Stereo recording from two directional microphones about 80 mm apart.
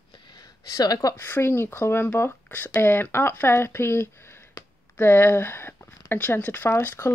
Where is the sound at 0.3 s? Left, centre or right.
Left.